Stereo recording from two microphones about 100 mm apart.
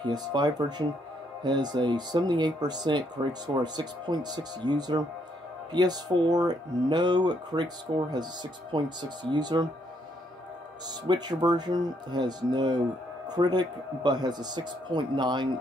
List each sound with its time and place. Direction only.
0.0 s speech: 50° right (ahead or behind)
11.1 s speech: 45° right (ahead or behind)